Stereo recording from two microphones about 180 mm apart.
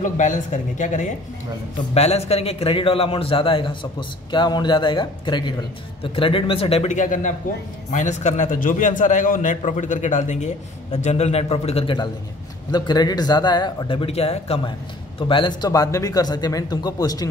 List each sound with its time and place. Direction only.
0.0 s a man's voice: 45° left (ahead or behind); by 17.3 s 20° left (ahead or behind)